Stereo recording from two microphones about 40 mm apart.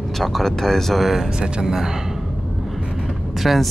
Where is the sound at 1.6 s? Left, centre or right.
Centre.